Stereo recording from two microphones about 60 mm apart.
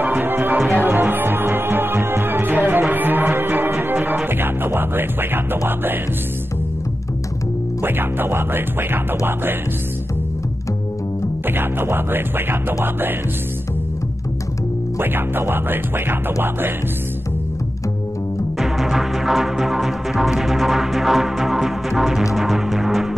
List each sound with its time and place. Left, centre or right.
0.0 s music: right
7.8 s music: right
11.4 s music: right
15.0 s music: right
18.6 s music: centre